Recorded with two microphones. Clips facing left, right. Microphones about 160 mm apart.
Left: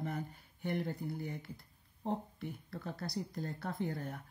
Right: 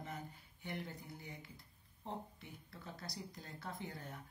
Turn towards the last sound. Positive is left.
turn(degrees=55)  # may be behind; listen again after turning